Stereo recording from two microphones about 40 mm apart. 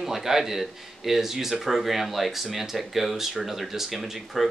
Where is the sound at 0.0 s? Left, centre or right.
Centre.